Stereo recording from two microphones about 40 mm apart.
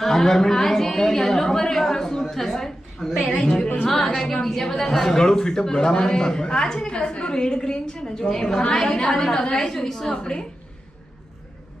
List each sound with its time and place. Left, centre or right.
0.0 s a man's voice: centre